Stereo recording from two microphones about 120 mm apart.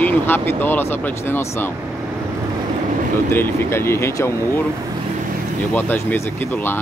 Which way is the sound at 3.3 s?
20° left (ahead or behind).